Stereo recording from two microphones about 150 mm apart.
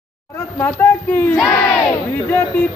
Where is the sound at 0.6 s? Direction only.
10° left (ahead or behind).